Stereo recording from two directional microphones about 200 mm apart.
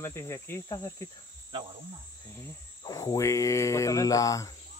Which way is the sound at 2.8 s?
20° left (ahead or behind).